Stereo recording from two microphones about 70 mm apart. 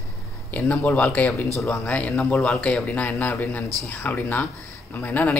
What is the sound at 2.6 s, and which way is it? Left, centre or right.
A man's voice, left.